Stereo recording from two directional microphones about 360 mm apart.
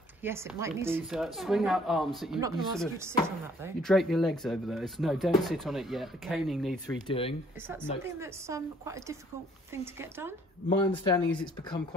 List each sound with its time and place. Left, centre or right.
0.2 s speech: centre
7.1 s speech: centre
7.6 s a woman's voice: centre
10.7 s speech: centre